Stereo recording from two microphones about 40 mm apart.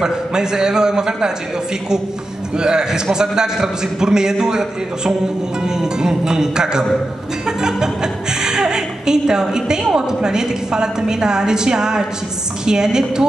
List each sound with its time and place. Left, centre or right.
0.0 s a man's voice: centre
2.5 s a man's voice: centre